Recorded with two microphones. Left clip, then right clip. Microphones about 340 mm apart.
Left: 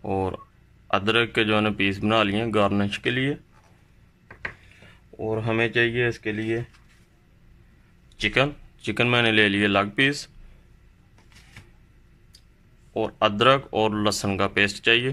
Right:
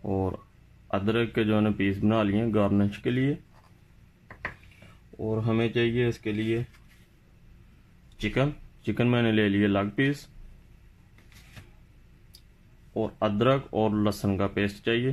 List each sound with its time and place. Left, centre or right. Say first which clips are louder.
0.0 s a sound: left 4 dB; left
0.8 s a man's voice: left 6 dB; left
5.4 s speech: left 5 dB; left
8.2 s a man's voice: left 6 dB; left
12.9 s a man's voice: left 5 dB; left